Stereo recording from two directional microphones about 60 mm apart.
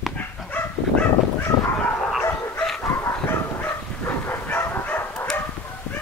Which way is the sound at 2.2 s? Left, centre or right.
Left.